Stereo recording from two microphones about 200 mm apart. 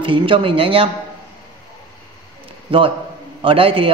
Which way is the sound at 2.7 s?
25° right (ahead or behind).